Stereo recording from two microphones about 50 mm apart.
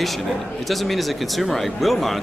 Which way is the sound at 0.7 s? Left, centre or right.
Centre.